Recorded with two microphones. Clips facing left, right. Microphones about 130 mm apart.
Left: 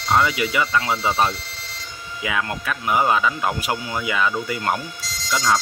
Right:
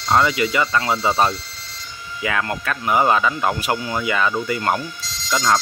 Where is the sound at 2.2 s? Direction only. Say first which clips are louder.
Right 2 dB; 5° left (ahead or behind).